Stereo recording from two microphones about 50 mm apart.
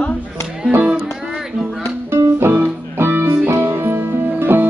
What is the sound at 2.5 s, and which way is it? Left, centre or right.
Music, right.